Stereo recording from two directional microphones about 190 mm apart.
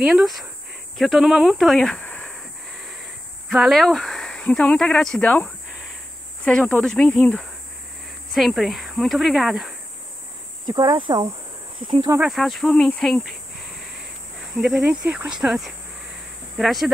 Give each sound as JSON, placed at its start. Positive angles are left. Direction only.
{"t": 0.0, "sound": "speech", "side_deg": 0}
{"t": 2.8, "sound": "a sound", "side_deg": 0}
{"t": 6.4, "sound": "speech", "side_deg": 5}
{"t": 10.7, "sound": "speech", "side_deg": -20}
{"t": 12.2, "sound": "speech", "side_deg": 0}
{"t": 14.5, "sound": "speech", "side_deg": 0}